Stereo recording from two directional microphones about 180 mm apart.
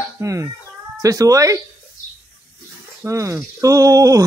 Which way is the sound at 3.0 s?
15° right (ahead or behind).